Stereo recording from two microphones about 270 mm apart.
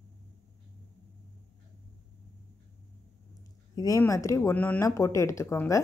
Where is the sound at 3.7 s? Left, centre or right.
Centre.